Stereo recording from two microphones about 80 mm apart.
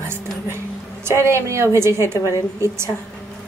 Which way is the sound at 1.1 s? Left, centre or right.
Right.